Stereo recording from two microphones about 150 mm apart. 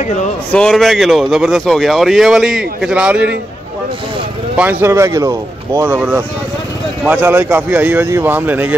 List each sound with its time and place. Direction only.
0.0 s a man's voice: 50° left (ahead or behind)
0.5 s speech: 5° left (ahead or behind)
4.6 s speech: 15° right (ahead or behind)
5.9 s speech: 10° right (ahead or behind)